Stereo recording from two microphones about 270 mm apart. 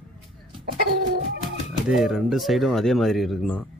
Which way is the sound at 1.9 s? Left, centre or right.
Centre.